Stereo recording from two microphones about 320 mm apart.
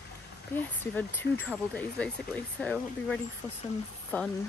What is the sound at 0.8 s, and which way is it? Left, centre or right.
Speech, centre.